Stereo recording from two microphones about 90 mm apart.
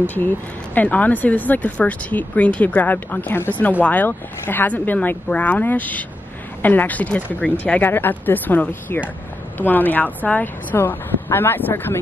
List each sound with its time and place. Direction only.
0.0 s speech: 20° left (ahead or behind)